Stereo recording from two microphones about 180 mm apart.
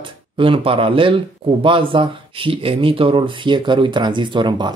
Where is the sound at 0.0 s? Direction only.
30° right (ahead or behind).